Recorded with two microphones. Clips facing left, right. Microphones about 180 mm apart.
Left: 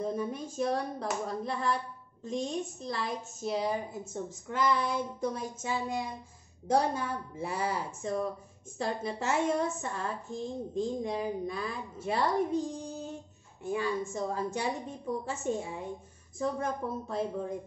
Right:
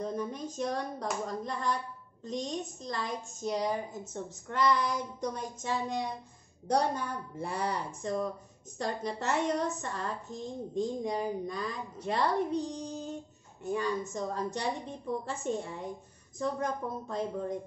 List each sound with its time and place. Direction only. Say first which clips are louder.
0.0 s a woman's voice: left 1 dB; 5° left (ahead or behind)